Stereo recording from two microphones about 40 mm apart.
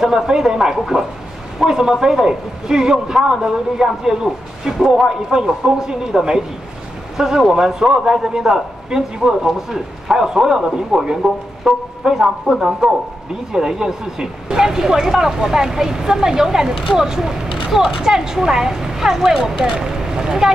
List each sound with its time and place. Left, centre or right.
0.0 s a man's voice: centre